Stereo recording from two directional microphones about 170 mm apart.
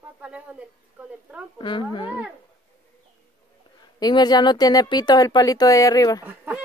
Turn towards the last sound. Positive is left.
turn(degrees=-10)  # may be behind; listen again after turning